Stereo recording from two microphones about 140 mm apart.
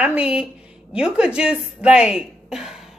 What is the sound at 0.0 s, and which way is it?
A woman's voice, 10° right (ahead or behind).